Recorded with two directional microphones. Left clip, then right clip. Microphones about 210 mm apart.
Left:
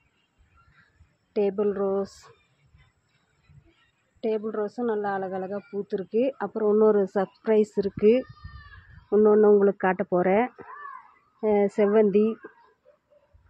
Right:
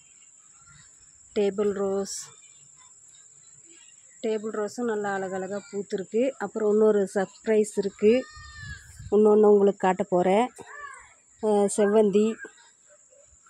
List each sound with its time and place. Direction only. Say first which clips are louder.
1.3 s speech: even; 15° right (ahead or behind)
4.2 s speech: left 1 dB; 5° right (ahead or behind)
11.8 s speech: left 1 dB; 20° right (ahead or behind)
12.3 s speech: even; 10° right (ahead or behind)